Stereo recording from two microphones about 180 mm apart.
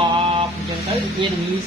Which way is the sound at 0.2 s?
30° right (ahead or behind).